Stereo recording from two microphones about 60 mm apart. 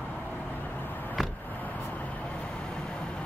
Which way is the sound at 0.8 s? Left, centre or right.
Left.